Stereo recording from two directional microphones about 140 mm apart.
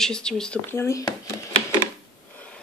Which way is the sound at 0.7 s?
20° left (ahead or behind).